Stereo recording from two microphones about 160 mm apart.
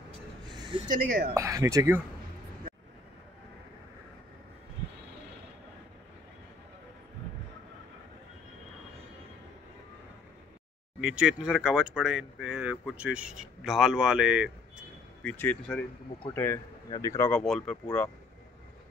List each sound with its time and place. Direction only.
0.5 s a sound: 25° right (ahead or behind)
0.8 s speech: 70° right (ahead or behind)
1.3 s speech: 20° right (ahead or behind)
11.0 s speech: 5° right (ahead or behind)
15.2 s speech: 10° left (ahead or behind)
16.9 s speech: 20° left (ahead or behind)
17.3 s speech: 5° left (ahead or behind)